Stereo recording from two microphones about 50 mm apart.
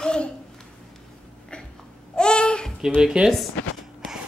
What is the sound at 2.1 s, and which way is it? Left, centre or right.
Babbling, centre.